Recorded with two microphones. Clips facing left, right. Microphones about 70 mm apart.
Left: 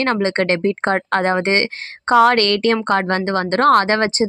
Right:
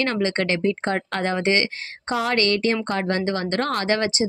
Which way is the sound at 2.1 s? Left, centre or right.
Left.